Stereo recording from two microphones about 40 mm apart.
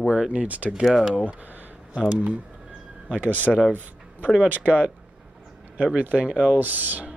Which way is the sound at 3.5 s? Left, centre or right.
Centre.